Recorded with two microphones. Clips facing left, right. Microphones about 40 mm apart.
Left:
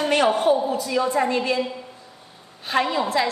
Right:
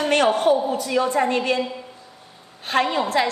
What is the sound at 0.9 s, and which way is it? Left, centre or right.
Speech, right.